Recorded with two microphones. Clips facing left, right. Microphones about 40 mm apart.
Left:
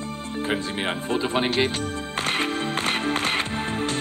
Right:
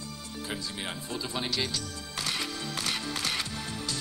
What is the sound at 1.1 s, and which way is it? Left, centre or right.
Speech, left.